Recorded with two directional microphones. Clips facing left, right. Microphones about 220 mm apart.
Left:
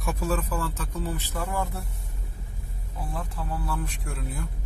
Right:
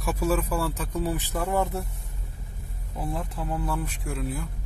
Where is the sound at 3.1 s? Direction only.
15° right (ahead or behind).